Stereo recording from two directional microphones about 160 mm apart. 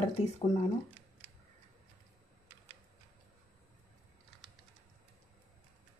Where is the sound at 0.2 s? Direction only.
40° left (ahead or behind).